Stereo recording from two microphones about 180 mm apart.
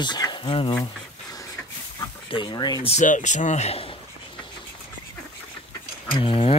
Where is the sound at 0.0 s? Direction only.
25° left (ahead or behind).